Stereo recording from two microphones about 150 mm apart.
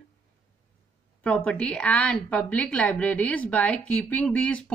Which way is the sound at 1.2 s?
10° left (ahead or behind).